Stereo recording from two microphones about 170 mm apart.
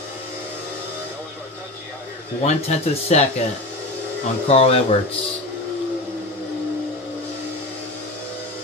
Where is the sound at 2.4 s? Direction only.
40° left (ahead or behind).